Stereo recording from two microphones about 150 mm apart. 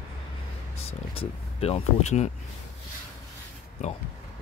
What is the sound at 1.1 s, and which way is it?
Speech, 40° left (ahead or behind).